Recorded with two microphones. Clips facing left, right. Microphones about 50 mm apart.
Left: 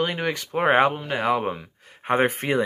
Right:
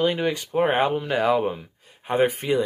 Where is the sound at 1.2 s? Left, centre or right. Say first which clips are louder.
Right 3 dB; left.